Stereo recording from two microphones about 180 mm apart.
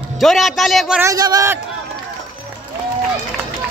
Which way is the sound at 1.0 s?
20° right (ahead or behind).